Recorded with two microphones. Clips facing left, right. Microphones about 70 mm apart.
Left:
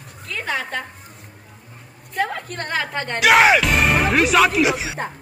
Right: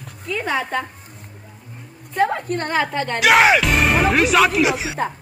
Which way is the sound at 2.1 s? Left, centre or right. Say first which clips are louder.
Right 5 dB; right.